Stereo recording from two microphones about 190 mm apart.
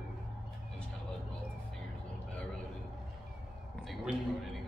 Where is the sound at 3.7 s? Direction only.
Centre (ahead or behind).